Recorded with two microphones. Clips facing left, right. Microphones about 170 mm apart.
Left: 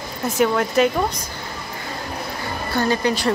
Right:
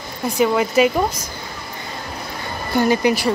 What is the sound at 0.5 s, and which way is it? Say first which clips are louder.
Speech: right 2 dB; 5° right (ahead or behind).